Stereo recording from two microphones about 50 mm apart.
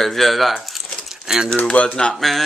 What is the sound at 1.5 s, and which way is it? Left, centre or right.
Speech, left.